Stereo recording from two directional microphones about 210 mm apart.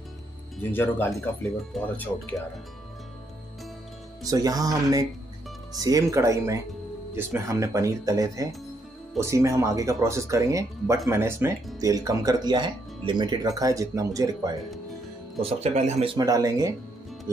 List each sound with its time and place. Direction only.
0.6 s speech: 10° left (ahead or behind)
4.3 s speech: 15° right (ahead or behind)
15.4 s speech: 30° right (ahead or behind)